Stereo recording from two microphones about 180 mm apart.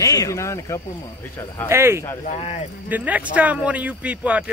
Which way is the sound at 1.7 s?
15° right (ahead or behind).